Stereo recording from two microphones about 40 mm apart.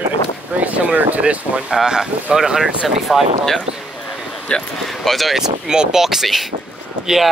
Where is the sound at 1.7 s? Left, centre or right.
Centre.